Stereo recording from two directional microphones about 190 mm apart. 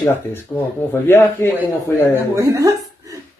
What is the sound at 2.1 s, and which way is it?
Speech, 15° right (ahead or behind).